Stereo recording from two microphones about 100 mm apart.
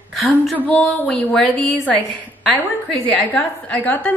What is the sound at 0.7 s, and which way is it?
A woman's voice, 10° left (ahead or behind).